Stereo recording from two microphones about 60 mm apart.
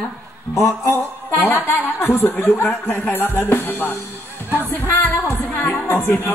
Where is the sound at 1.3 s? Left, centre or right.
Left.